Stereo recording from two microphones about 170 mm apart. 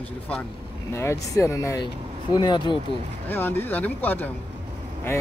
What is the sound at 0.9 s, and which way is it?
Speech, 15° left (ahead or behind).